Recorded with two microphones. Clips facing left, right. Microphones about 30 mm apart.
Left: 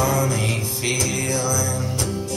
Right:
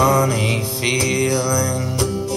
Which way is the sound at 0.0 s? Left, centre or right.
Right.